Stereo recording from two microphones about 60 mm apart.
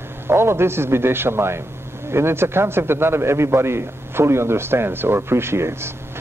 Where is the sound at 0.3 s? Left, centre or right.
Right.